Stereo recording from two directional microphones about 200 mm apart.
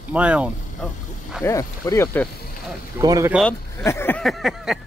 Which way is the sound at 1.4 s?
15° left (ahead or behind).